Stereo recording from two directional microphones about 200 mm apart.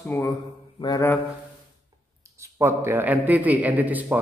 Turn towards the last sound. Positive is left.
turn(degrees=-10)  # may be behind; listen again after turning